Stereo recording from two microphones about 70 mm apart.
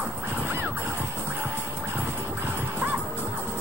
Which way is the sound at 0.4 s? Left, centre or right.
Right.